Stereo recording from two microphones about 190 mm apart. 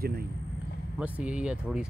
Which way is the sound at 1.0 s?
5° right (ahead or behind).